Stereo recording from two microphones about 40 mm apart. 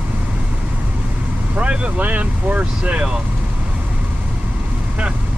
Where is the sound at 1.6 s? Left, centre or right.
Right.